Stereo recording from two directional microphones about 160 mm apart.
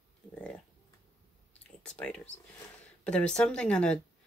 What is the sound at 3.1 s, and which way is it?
Speech, 5° left (ahead or behind).